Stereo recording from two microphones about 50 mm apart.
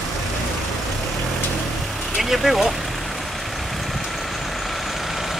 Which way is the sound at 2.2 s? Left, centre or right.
Centre.